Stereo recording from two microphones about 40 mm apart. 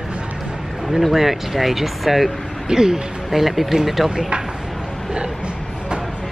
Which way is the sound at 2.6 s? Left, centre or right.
Centre.